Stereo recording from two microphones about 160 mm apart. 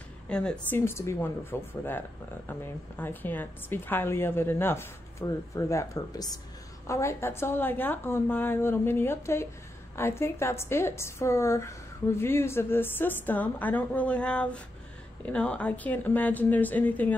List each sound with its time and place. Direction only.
0.3 s a woman's voice: 5° left (ahead or behind)